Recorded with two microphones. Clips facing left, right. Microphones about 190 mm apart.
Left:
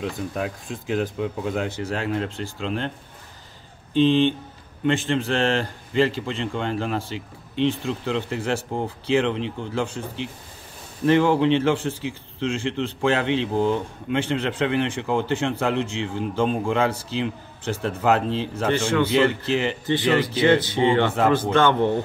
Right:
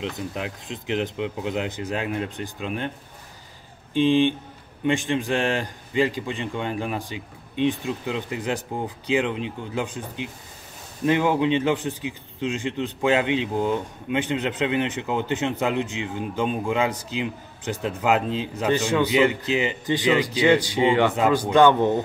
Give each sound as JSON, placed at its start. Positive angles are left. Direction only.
{"t": 0.7, "sound": "speech", "side_deg": -20}
{"t": 3.9, "sound": "speech", "side_deg": -10}